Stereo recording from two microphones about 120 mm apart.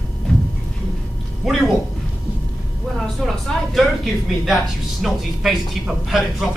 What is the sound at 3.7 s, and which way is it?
Speech, centre (ahead or behind).